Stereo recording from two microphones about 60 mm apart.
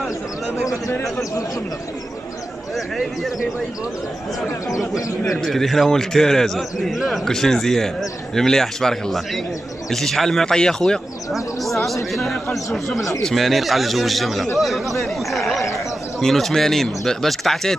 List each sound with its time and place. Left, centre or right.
2.7 s a man's voice: centre
4.6 s speech: left
5.4 s a man's voice: centre